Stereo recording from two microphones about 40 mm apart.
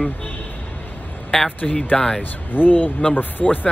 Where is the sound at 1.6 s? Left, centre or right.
Centre.